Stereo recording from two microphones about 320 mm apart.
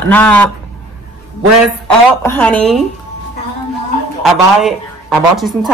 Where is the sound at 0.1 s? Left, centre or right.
Centre.